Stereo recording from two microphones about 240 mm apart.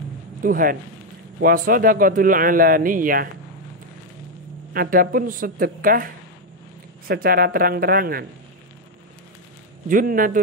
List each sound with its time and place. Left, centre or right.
0.4 s a man's voice: right
4.7 s a man's voice: right
9.8 s a man's voice: right